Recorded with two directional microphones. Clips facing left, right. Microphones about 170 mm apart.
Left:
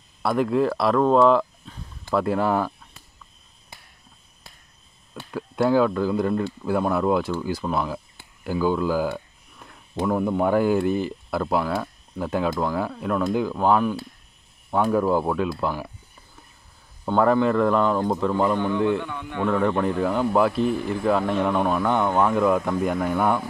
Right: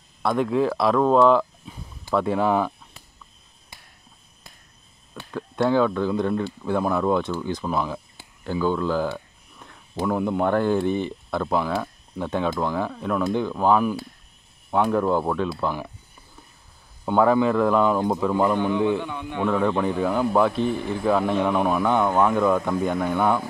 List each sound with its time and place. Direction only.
0.2 s speech: 5° left (ahead or behind)
1.6 s a sound: 10° right (ahead or behind)
2.1 s speech: centre (ahead or behind)
5.3 s speech: 5° left (ahead or behind)
17.0 s speech: centre (ahead or behind)
19.0 s a man's voice: 15° right (ahead or behind)
19.4 s speech: centre (ahead or behind)